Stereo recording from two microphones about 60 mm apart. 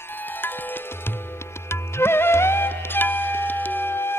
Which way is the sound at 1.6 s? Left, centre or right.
Left.